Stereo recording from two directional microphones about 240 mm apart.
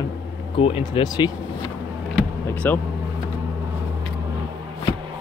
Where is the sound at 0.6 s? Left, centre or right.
Left.